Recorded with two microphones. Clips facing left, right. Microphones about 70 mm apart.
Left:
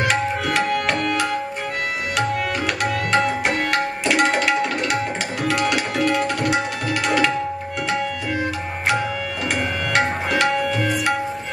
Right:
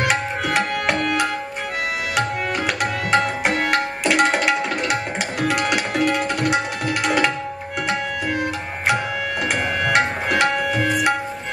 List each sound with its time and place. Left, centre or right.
0.0 s tabla: centre
2.8 s tabla: centre
9.8 s tabla: centre